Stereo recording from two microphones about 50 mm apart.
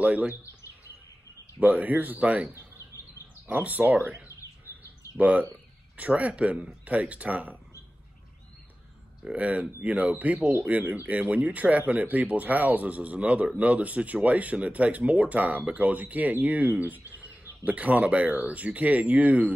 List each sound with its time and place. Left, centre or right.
0.0 s speech: right
1.6 s speech: right
4.4 s bird: left
5.1 s speech: right
9.3 s speech: right